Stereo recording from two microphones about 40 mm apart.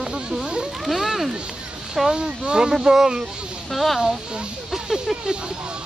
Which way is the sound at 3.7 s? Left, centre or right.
Centre.